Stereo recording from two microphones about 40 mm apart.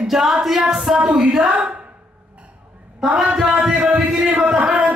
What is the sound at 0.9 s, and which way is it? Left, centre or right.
Speech, right.